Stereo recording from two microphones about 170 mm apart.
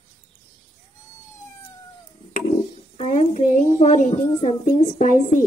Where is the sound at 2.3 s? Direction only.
40° left (ahead or behind).